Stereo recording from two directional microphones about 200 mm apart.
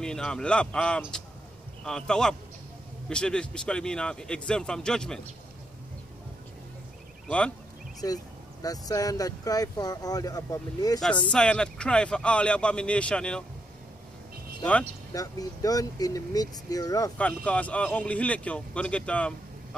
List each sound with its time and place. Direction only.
0.0 s speech: 5° left (ahead or behind)
7.2 s speech: 5° left (ahead or behind)
8.0 s speech: 20° left (ahead or behind)
11.2 s speech: 5° left (ahead or behind)
14.6 s speech: 5° left (ahead or behind)
15.1 s speech: 20° left (ahead or behind)
17.2 s speech: 5° left (ahead or behind)